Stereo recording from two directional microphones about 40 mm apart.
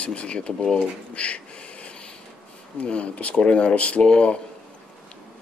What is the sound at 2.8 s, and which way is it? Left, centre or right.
A man's voice, left.